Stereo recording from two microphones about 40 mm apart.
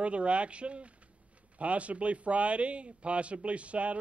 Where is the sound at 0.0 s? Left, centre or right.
Right.